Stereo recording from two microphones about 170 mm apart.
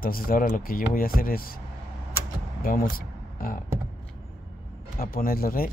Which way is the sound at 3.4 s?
55° left (ahead or behind).